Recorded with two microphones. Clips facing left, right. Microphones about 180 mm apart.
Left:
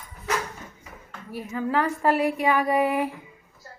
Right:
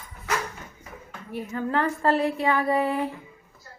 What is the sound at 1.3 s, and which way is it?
A woman's voice, 5° left (ahead or behind).